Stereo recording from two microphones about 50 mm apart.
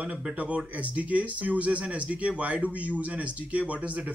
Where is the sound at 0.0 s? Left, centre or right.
Right.